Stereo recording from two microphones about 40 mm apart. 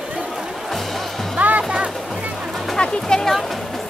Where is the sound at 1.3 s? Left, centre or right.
Right.